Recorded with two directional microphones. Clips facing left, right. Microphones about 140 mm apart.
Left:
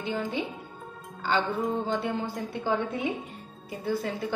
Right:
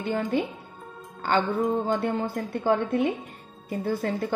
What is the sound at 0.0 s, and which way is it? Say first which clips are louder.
Speech: right 4 dB; 50° right (ahead or behind).